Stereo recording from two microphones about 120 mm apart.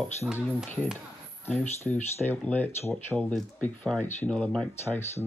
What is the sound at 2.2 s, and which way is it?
Speech, 15° left (ahead or behind).